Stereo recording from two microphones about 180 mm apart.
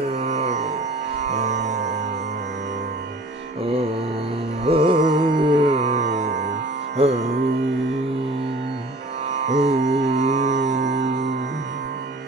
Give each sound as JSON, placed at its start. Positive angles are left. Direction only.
{"t": 0.1, "sound": "music", "side_deg": -40}
{"t": 3.6, "sound": "mantra", "side_deg": -30}
{"t": 4.6, "sound": "carnatic music", "side_deg": -30}
{"t": 5.8, "sound": "music", "side_deg": -40}
{"t": 9.3, "sound": "music", "side_deg": -40}
{"t": 10.6, "sound": "music", "side_deg": -75}